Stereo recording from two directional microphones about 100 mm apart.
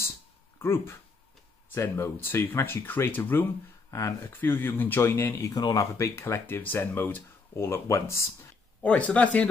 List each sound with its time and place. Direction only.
0.6 s speech: 25° left (ahead or behind)
8.8 s speech: 15° left (ahead or behind)